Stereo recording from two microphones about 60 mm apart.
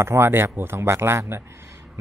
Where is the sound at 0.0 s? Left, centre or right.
Right.